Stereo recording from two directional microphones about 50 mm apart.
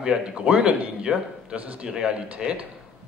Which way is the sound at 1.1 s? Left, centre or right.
Centre.